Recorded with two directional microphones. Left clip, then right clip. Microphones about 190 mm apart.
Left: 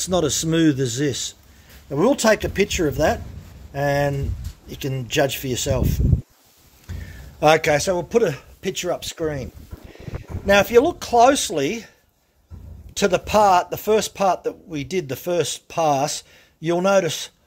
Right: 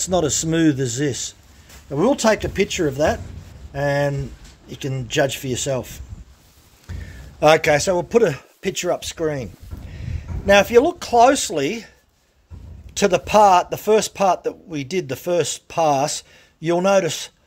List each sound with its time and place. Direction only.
0.0 s speech: centre (ahead or behind); by 10.1 s 20° right (ahead or behind)
10.4 s speech: 10° right (ahead or behind)
12.9 s speech: 15° right (ahead or behind)